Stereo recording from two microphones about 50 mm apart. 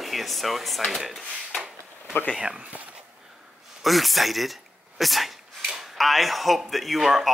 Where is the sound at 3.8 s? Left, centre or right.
Centre.